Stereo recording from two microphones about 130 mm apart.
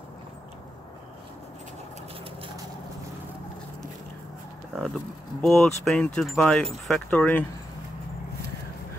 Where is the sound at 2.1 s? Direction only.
45° right (ahead or behind).